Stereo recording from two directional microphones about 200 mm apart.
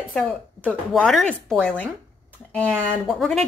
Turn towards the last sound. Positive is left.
turn(degrees=0)  # may be behind; listen again after turning